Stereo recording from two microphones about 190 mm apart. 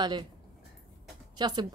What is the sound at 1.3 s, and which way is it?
Speech, 20° right (ahead or behind).